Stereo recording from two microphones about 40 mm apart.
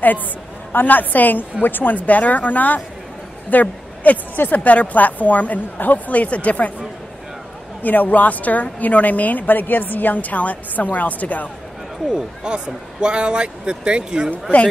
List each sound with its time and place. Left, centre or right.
0.7 s a woman's voice: left
7.8 s a woman's voice: left
12.1 s a man's voice: right